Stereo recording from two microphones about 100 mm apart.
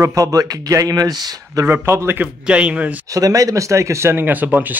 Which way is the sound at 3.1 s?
35° right (ahead or behind).